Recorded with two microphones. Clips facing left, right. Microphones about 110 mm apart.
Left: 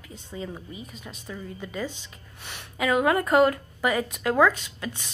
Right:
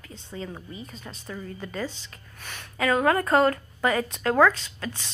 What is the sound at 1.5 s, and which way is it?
A woman's voice, 15° left (ahead or behind).